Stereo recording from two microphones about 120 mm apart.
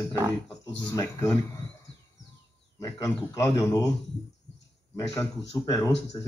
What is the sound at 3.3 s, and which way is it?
Speech, 20° left (ahead or behind).